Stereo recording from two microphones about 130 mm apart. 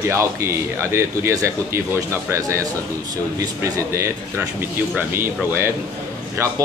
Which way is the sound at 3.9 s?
20° right (ahead or behind).